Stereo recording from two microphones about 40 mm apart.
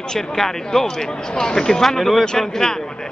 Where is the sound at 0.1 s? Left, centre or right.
Centre.